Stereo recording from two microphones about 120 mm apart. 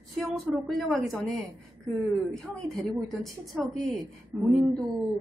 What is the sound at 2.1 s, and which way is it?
A woman's voice, 5° left (ahead or behind).